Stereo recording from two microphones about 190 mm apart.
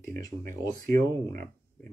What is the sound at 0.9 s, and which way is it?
Speech, 50° right (ahead or behind).